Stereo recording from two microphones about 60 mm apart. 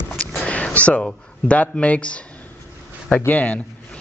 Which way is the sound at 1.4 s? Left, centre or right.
Left.